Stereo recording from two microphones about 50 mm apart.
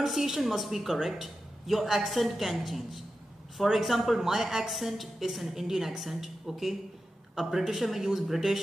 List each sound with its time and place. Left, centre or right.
0.0 s a woman's voice: centre